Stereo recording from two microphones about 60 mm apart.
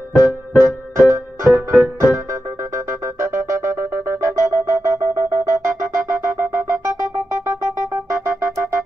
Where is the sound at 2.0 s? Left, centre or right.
Right.